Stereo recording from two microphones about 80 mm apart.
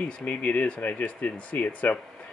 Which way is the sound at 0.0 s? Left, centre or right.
Centre.